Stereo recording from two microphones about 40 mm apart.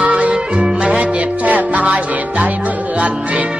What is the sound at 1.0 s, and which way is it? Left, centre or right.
Music, right.